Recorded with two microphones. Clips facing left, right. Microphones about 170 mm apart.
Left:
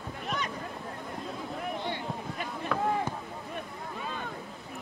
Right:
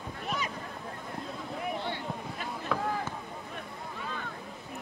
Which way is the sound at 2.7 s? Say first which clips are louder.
Left 1 dB; centre (ahead or behind).